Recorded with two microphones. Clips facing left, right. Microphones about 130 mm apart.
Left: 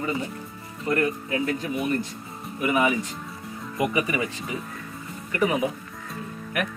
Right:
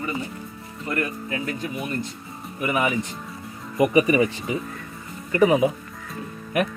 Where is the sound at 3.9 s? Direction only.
20° right (ahead or behind).